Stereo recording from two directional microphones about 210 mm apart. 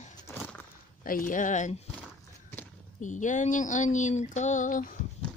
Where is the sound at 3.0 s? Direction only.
35° left (ahead or behind).